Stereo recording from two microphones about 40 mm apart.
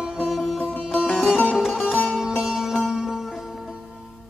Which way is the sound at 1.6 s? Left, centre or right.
Centre.